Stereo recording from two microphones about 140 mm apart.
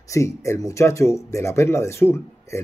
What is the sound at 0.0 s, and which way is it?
Speech, 20° left (ahead or behind).